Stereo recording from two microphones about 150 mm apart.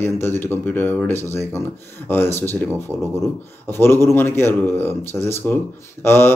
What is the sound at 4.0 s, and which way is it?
A man's voice, 15° left (ahead or behind).